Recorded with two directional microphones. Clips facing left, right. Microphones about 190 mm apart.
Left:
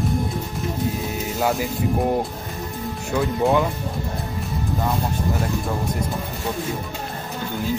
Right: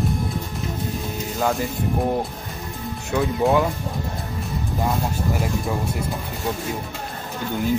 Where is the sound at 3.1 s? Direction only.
Centre (ahead or behind).